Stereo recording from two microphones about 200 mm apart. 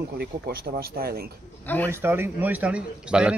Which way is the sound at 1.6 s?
10° left (ahead or behind).